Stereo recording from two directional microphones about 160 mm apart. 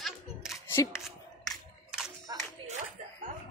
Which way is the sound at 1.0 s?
Centre (ahead or behind).